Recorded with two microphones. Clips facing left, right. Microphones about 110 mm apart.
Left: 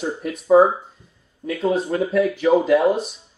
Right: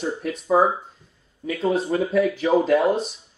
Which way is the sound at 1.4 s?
Centre (ahead or behind).